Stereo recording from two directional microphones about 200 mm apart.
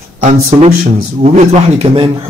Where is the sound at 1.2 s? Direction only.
30° right (ahead or behind).